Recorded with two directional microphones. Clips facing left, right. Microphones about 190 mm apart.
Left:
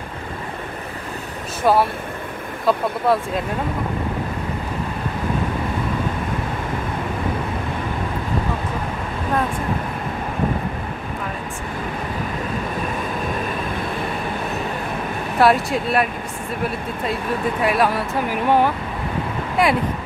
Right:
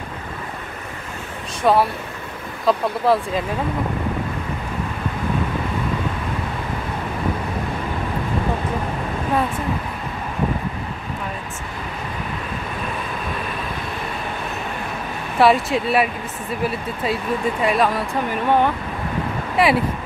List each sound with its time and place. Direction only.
1.6 s speech: 5° left (ahead or behind)
15.3 s speech: centre (ahead or behind)